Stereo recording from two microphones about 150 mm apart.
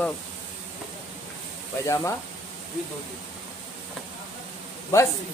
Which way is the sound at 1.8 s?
20° left (ahead or behind).